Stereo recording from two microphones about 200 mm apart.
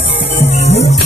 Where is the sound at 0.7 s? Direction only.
35° left (ahead or behind).